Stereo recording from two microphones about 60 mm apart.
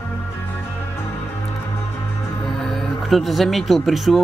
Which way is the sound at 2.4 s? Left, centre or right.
Centre.